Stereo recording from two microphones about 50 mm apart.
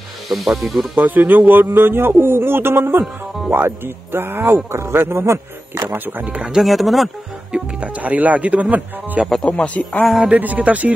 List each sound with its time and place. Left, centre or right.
0.3 s speech: centre
0.9 s speech: right
4.6 s speech: right
5.9 s speech: right
6.2 s speech: right
6.6 s speech: centre
7.5 s speech: right
9.4 s speech: left
10.4 s speech: right